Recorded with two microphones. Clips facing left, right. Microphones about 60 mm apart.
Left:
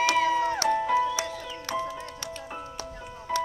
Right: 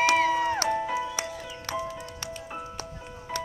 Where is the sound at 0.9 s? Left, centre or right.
Left.